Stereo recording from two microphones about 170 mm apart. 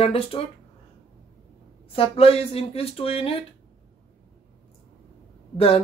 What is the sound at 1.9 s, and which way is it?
Speech, 35° left (ahead or behind).